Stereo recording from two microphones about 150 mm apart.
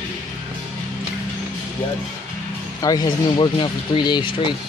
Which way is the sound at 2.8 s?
25° left (ahead or behind).